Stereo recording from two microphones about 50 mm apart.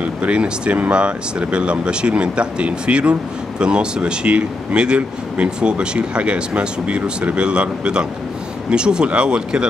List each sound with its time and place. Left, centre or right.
0.0 s speech: right